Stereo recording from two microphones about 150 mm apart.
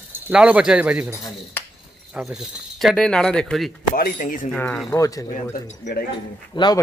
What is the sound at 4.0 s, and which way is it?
Speech, 70° left (ahead or behind).